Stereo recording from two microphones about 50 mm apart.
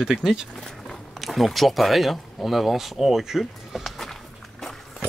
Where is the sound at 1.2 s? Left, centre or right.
Centre.